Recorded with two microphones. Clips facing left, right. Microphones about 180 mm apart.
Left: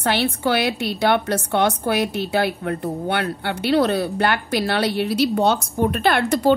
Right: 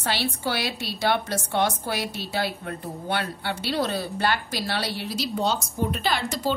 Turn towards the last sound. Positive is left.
turn(degrees=60)  # may be behind; listen again after turning